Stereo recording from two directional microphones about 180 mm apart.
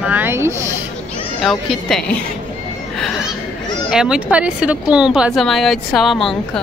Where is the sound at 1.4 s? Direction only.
Centre (ahead or behind).